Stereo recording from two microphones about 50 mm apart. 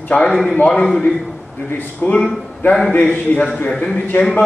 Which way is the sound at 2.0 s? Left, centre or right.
Left.